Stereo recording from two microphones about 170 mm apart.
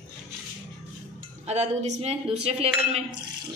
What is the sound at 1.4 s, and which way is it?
Cutlery, 40° right (ahead or behind).